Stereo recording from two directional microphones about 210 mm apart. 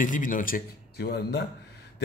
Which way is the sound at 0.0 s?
40° left (ahead or behind).